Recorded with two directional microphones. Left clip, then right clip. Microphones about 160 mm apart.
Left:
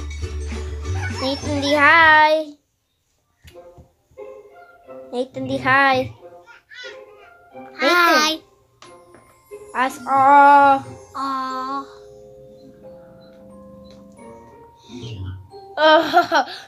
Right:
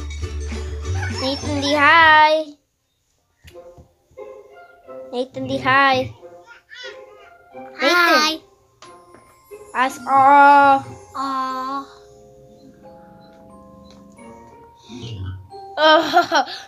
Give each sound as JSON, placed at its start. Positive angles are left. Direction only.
{"t": 0.2, "sound": "music", "side_deg": -35}
{"t": 1.5, "sound": "child singing", "side_deg": 10}
{"t": 5.1, "sound": "child singing", "side_deg": 5}
{"t": 6.4, "sound": "children playing", "side_deg": -40}
{"t": 7.6, "sound": "speech", "side_deg": -5}
{"t": 9.7, "sound": "speech", "side_deg": 0}
{"t": 11.1, "sound": "music", "side_deg": -10}
{"t": 14.9, "sound": "music", "side_deg": -45}
{"t": 15.7, "sound": "speech", "side_deg": -5}